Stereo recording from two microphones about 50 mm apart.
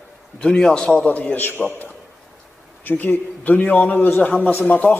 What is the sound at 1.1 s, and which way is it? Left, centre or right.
Speech, left.